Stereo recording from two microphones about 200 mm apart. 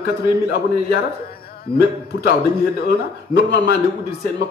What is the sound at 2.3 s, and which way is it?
A man's voice, 50° left (ahead or behind).